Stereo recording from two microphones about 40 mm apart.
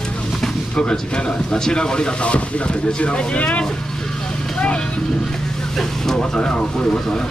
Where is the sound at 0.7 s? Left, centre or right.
Left.